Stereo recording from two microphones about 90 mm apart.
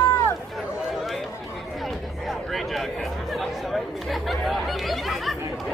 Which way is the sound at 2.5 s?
Centre (ahead or behind).